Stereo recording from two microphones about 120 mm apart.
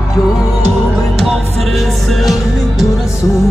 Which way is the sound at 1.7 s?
Centre (ahead or behind).